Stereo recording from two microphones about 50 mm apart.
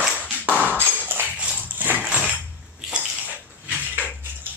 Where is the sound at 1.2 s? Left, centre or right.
Right.